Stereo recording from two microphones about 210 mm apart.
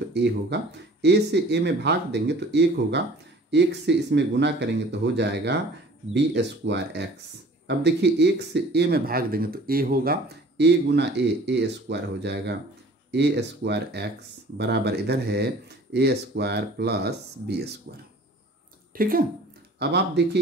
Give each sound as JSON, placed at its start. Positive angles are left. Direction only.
{"t": 0.1, "sound": "speech", "side_deg": -55}